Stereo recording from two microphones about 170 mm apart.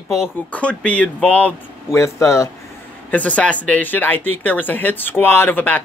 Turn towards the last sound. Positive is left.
turn(degrees=10)  # may be behind; listen again after turning